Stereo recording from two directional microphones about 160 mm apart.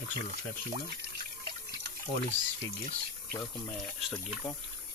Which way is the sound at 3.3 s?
20° left (ahead or behind).